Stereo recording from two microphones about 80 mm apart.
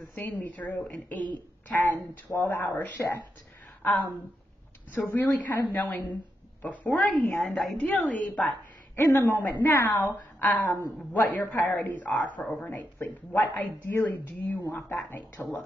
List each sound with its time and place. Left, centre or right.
0.2 s a woman's voice: left